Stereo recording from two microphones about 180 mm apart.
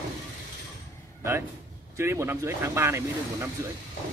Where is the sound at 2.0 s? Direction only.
15° right (ahead or behind).